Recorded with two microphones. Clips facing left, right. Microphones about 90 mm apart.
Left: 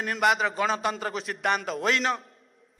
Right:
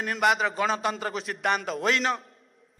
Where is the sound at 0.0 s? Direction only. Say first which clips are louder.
Even; centre (ahead or behind).